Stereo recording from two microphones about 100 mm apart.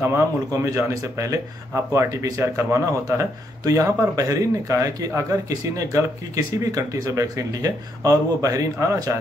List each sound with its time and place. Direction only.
0.0 s speech: 25° right (ahead or behind)